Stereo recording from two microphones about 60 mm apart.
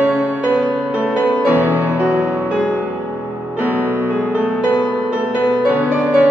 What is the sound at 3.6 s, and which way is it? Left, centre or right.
Music, right.